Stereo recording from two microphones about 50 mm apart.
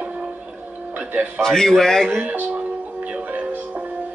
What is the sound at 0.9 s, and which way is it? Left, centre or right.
Speech, right.